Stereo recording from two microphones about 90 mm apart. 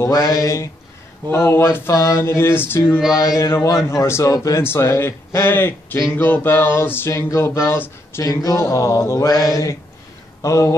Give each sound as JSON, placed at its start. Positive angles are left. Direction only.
{"t": 0.0, "sound": "mantra", "side_deg": 40}
{"t": 1.3, "sound": "a man's voice", "side_deg": 25}
{"t": 3.2, "sound": "a man's voice", "side_deg": 35}
{"t": 8.2, "sound": "mantra", "side_deg": 40}